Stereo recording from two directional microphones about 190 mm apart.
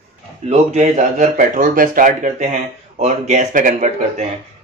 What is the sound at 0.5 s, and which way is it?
A man's voice, 35° right (ahead or behind).